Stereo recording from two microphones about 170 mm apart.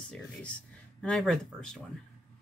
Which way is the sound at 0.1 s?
5° left (ahead or behind).